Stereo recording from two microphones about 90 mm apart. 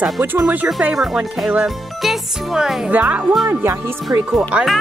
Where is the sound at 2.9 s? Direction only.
20° right (ahead or behind); by 4.3 s 35° right (ahead or behind).